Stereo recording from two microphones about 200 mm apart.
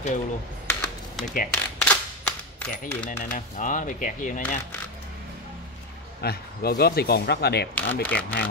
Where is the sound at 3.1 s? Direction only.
40° left (ahead or behind).